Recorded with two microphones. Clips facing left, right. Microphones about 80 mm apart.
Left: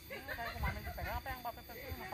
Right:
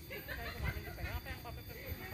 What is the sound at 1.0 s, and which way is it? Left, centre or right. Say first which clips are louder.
Vehicle: left 9 dB; left.